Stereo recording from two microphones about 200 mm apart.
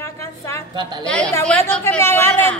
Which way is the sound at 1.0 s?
5° left (ahead or behind).